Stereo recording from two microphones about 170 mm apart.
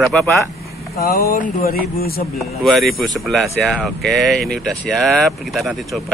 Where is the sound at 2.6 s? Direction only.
Centre (ahead or behind).